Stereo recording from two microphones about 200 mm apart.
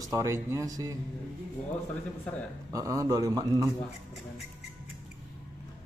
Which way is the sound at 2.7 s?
15° right (ahead or behind).